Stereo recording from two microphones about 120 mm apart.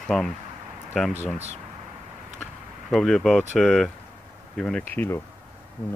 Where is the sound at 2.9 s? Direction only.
Centre (ahead or behind).